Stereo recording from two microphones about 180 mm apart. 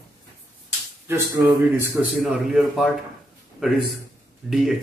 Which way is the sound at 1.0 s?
15° right (ahead or behind).